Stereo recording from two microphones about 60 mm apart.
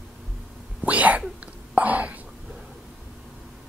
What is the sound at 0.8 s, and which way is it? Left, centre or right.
Whispering, right.